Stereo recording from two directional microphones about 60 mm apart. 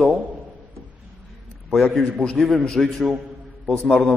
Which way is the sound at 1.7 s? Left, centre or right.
Centre.